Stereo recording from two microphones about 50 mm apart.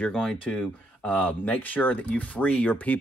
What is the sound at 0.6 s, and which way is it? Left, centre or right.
Speech, left.